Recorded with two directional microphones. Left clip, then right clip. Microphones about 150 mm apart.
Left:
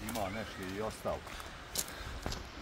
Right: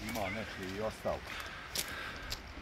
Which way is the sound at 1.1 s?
55° right (ahead or behind).